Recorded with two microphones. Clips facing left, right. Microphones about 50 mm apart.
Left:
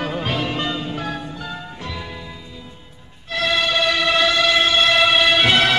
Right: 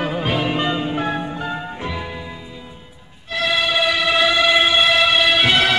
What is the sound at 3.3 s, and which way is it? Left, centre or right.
Music, centre.